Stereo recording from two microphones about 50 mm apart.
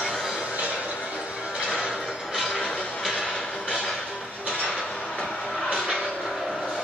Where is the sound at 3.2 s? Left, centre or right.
Centre.